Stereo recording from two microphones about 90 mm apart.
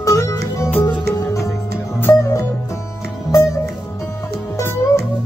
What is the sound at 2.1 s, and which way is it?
Music, 35° left (ahead or behind).